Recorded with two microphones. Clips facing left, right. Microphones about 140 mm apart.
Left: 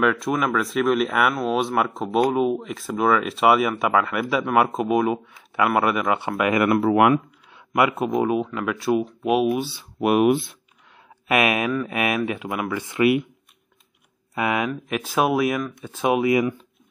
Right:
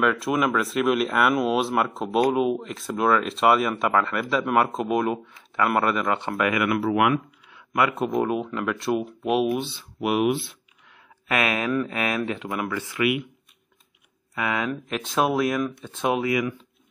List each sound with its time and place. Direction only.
0.0 s speech: centre (ahead or behind)
6.5 s speech: 40° left (ahead or behind)
7.7 s speech: 10° left (ahead or behind)
9.9 s speech: 50° left (ahead or behind)
11.2 s speech: 15° left (ahead or behind)
14.3 s speech: 15° left (ahead or behind)
14.7 s speech: 5° left (ahead or behind)
16.3 s speech: 25° left (ahead or behind)